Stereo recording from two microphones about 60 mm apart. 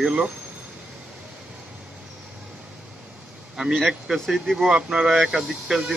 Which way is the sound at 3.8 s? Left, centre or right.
Centre.